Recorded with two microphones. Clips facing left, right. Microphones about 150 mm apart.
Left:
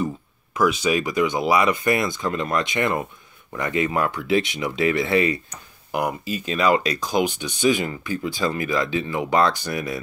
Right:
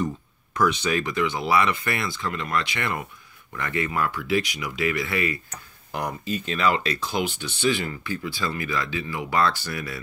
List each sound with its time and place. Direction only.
0.6 s speech: 10° left (ahead or behind); by 5.4 s 25° left (ahead or behind)
5.9 s speech: 10° left (ahead or behind)